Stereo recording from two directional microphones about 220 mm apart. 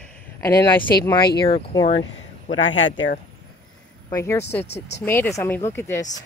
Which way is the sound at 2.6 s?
60° left (ahead or behind).